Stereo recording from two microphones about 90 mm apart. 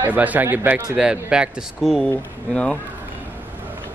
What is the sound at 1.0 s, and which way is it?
Speech, 10° right (ahead or behind).